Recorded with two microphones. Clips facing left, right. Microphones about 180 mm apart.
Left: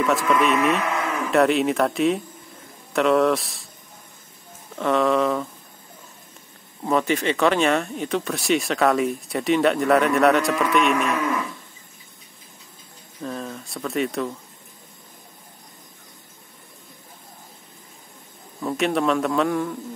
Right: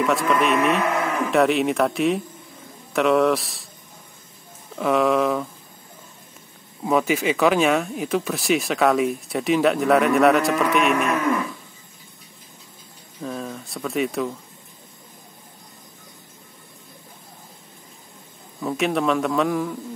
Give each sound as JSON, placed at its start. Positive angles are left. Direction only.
{"t": 0.0, "sound": "speech", "side_deg": 0}
{"t": 4.7, "sound": "speech", "side_deg": -5}
{"t": 6.8, "sound": "speech", "side_deg": -5}
{"t": 13.2, "sound": "speech", "side_deg": 0}
{"t": 18.6, "sound": "speech", "side_deg": 0}